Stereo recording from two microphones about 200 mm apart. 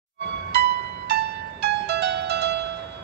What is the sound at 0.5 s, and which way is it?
Music, 55° right (ahead or behind).